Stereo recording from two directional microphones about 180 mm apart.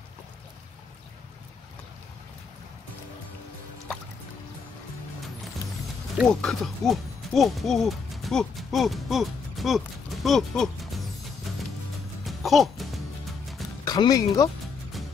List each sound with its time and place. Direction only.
6.1 s speech: centre (ahead or behind)
11.5 s music: centre (ahead or behind)
13.8 s speech: 20° left (ahead or behind)